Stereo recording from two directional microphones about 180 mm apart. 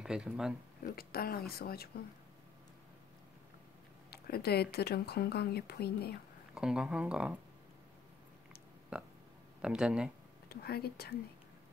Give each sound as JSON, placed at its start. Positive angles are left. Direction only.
{"t": 0.0, "sound": "speech", "side_deg": -5}
{"t": 0.8, "sound": "speech", "side_deg": 55}
{"t": 4.1, "sound": "speech", "side_deg": 60}
{"t": 6.5, "sound": "speech", "side_deg": -5}
{"t": 8.9, "sound": "speech", "side_deg": -5}
{"t": 10.5, "sound": "speech", "side_deg": 60}